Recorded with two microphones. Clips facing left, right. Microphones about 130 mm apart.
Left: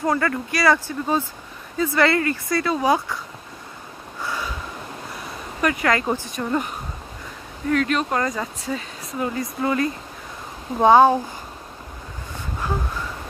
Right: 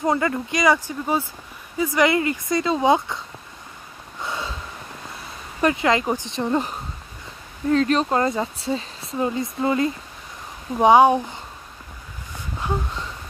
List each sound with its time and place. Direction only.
0.0 s speech: 20° right (ahead or behind)
4.2 s a sound: 25° right (ahead or behind)
5.6 s speech: 25° right (ahead or behind)
7.7 s speech: 30° right (ahead or behind); by 11.1 s 15° right (ahead or behind)